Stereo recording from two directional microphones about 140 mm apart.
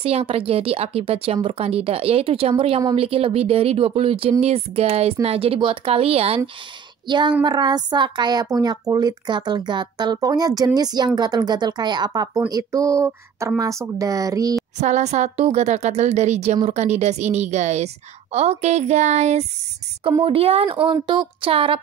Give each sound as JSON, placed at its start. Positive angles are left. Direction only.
{"t": 0.0, "sound": "speech", "side_deg": -45}
{"t": 7.1, "sound": "a woman's voice", "side_deg": -35}
{"t": 14.8, "sound": "speech", "side_deg": -55}
{"t": 20.0, "sound": "a woman's voice", "side_deg": -35}